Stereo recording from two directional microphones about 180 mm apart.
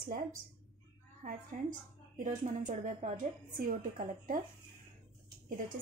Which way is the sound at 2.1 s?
45° right (ahead or behind).